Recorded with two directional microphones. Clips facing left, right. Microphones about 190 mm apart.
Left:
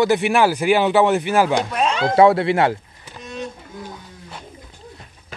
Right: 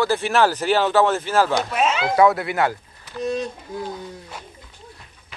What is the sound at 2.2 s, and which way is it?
Speech, 25° left (ahead or behind).